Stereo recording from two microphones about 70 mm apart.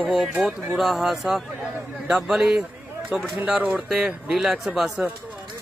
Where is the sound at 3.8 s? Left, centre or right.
Centre.